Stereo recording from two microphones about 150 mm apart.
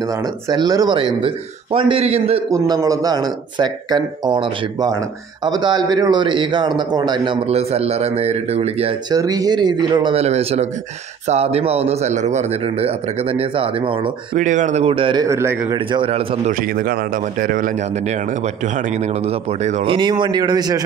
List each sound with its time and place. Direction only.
0.5 s a man's voice: 25° right (ahead or behind); by 2.4 s 45° right (ahead or behind)
2.5 s speech: 25° right (ahead or behind)
7.4 s a man's voice: 40° right (ahead or behind)
9.1 s speech: 25° right (ahead or behind)
10.1 s a man's voice: 45° right (ahead or behind)
14.3 s a man's voice: 55° right (ahead or behind); by 15.2 s 35° right (ahead or behind)
15.2 s speech: 20° right (ahead or behind)
15.9 s a man's voice: 35° right (ahead or behind)
16.6 s speech: 80° right; by 18.1 s 60° right (ahead or behind)
18.8 s a man's voice: 50° right (ahead or behind)
19.9 s speech: 30° right (ahead or behind)